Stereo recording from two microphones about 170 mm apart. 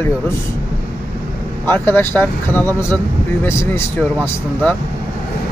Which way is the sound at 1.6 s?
15° left (ahead or behind).